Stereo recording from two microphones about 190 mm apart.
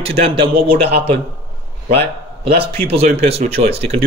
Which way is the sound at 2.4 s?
30° right (ahead or behind).